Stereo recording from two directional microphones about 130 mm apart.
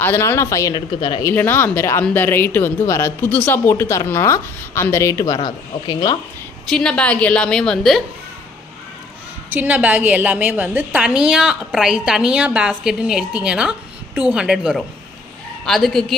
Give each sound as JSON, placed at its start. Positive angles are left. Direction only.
{"t": 0.0, "sound": "a woman's voice", "side_deg": 20}
{"t": 1.2, "sound": "a woman's voice", "side_deg": 15}
{"t": 6.7, "sound": "a woman's voice", "side_deg": 5}
{"t": 9.5, "sound": "a woman's voice", "side_deg": -10}